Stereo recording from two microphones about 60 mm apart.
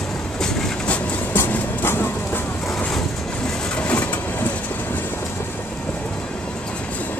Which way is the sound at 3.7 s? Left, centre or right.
Left.